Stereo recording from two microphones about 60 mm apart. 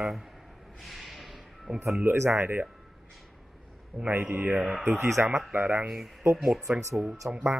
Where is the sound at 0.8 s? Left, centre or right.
Centre.